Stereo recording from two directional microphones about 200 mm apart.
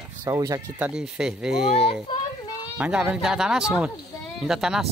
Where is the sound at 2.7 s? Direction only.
5° right (ahead or behind).